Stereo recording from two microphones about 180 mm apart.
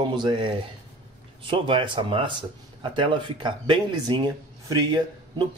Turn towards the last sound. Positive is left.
turn(degrees=-20)  # may be behind; listen again after turning